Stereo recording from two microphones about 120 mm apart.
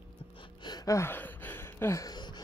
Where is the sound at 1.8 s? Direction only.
20° left (ahead or behind).